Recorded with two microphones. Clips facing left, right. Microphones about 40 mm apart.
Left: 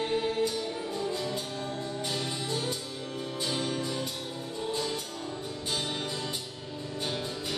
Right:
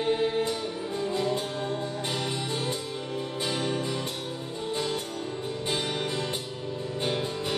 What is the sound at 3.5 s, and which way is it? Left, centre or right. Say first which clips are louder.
Music: right 2 dB; right.